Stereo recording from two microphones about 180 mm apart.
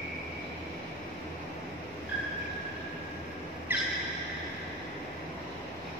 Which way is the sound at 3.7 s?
10° right (ahead or behind).